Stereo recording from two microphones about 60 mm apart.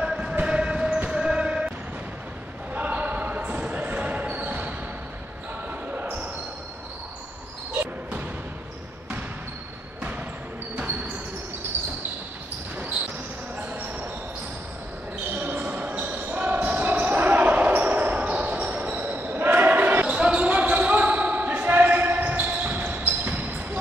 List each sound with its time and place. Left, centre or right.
0.0 s basketball bounce: centre
2.7 s basketball bounce: right
10.8 s a sound: right
15.3 s basketball bounce: right
20.1 s basketball bounce: centre